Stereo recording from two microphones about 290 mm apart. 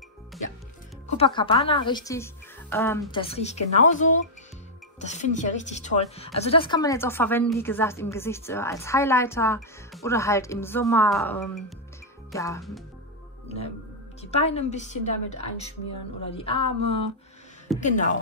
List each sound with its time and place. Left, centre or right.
1.0 s a woman's voice: centre
3.2 s a woman's voice: left
13.5 s music: left
14.2 s a woman's voice: left